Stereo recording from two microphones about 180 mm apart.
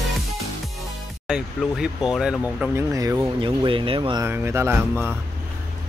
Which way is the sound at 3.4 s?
30° right (ahead or behind).